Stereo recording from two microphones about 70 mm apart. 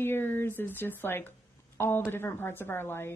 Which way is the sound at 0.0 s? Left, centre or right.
Left.